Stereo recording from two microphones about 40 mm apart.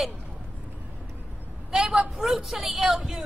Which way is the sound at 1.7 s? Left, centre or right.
Right.